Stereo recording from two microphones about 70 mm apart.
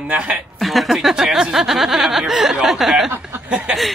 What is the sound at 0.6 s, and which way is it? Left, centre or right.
Speech, centre.